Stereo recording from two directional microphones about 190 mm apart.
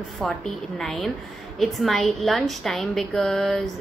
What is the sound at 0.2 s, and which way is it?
A woman's voice, centre (ahead or behind).